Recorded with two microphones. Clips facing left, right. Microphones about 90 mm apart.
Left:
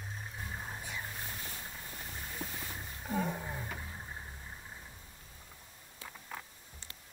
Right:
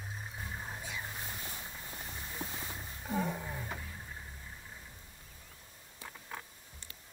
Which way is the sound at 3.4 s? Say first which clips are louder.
Left 1 dB; 15° left (ahead or behind).